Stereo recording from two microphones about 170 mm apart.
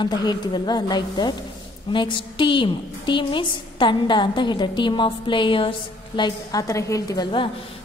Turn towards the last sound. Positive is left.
turn(degrees=25)  # may be behind; listen again after turning